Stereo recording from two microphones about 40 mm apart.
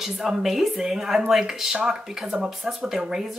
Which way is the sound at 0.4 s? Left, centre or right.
Centre.